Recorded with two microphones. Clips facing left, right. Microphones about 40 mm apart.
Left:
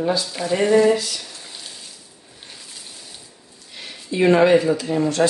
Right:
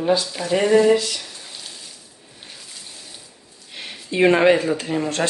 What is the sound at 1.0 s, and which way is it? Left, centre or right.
Speech, centre.